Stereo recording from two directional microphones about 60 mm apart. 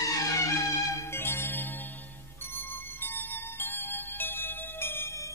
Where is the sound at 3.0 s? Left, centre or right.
Left.